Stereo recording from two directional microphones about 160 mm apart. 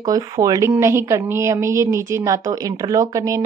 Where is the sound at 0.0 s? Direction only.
20° right (ahead or behind).